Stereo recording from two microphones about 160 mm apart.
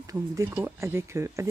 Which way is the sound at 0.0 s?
20° right (ahead or behind).